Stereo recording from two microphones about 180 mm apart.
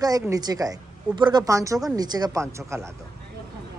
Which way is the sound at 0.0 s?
20° right (ahead or behind).